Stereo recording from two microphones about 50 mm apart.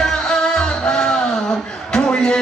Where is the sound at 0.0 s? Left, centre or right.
Centre.